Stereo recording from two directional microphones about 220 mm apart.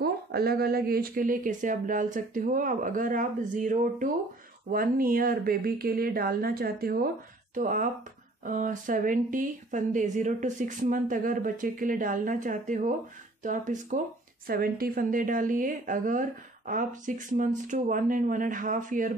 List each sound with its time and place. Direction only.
0.0 s a woman's voice: 45° right (ahead or behind)